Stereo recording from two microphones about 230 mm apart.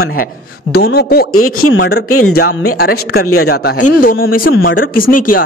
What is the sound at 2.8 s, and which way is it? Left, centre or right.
Speech, left.